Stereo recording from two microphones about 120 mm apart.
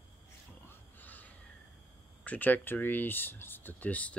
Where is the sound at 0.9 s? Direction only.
15° left (ahead or behind).